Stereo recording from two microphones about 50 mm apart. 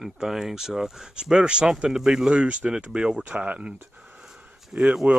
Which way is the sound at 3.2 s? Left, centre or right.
Right.